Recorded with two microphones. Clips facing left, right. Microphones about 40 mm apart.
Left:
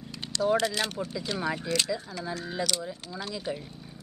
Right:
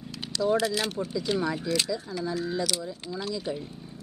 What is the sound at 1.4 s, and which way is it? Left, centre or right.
Speech, centre.